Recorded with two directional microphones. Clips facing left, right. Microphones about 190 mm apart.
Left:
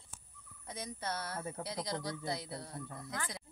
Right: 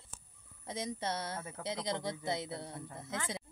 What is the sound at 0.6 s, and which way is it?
Speech, 25° right (ahead or behind).